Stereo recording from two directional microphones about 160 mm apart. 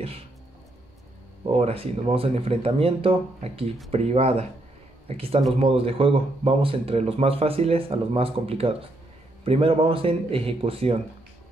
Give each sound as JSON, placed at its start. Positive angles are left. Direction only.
{"t": 1.6, "sound": "a man's voice", "side_deg": -35}